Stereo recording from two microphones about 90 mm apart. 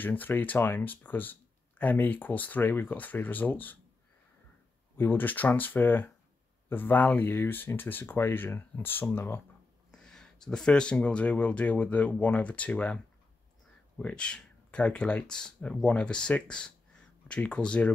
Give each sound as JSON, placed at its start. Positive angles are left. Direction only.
{"t": 0.0, "sound": "speech", "side_deg": 20}
{"t": 4.9, "sound": "speech", "side_deg": 20}
{"t": 9.8, "sound": "speech", "side_deg": 10}